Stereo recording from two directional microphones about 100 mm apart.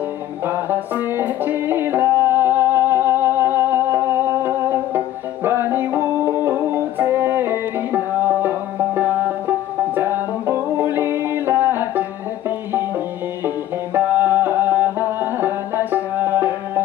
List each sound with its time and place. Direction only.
0.5 s music: 20° right (ahead or behind)